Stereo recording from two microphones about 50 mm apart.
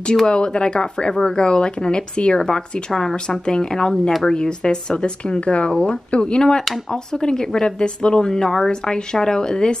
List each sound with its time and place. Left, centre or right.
0.3 s speech: centre